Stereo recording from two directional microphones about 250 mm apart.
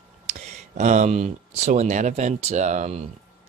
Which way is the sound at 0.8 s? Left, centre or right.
Right.